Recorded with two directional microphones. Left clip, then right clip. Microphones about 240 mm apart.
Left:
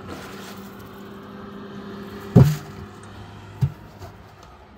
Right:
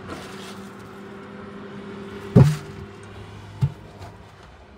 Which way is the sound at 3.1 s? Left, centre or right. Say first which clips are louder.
Even; right.